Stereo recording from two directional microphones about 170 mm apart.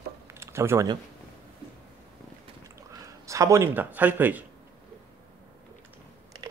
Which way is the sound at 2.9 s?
20° right (ahead or behind).